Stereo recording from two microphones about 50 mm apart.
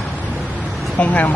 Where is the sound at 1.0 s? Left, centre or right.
Left.